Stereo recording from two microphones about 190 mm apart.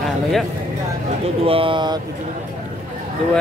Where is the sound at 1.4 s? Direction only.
30° right (ahead or behind).